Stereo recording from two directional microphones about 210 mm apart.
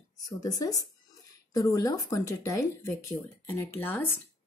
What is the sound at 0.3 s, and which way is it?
Speech, 15° left (ahead or behind).